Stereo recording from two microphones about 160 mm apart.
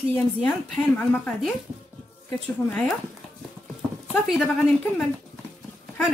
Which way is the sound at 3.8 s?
5° right (ahead or behind).